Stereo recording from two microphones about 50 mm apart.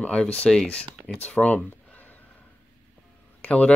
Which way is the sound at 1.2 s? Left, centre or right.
Left.